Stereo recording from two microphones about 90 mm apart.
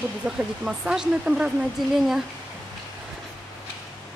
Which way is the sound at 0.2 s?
10° right (ahead or behind).